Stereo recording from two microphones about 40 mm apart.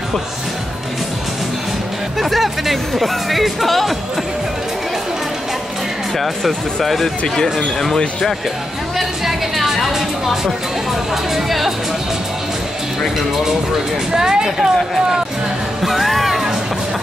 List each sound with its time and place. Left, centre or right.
2.1 s speech: centre
6.1 s speech: centre
8.9 s a sound: centre
11.3 s speech: centre
14.1 s speech: centre
15.8 s music: centre